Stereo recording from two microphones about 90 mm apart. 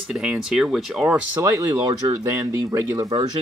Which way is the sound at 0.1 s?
5° right (ahead or behind).